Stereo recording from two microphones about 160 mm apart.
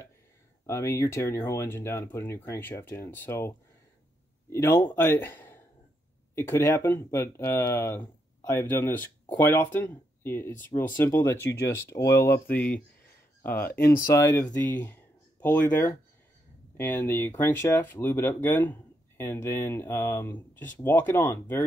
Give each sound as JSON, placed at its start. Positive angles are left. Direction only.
{"t": 0.7, "sound": "speech", "side_deg": 15}
{"t": 13.6, "sound": "speech", "side_deg": 70}
{"t": 14.1, "sound": "speech", "side_deg": 15}